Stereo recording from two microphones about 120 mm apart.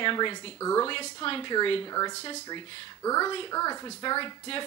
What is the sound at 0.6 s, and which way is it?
Speech, 30° left (ahead or behind).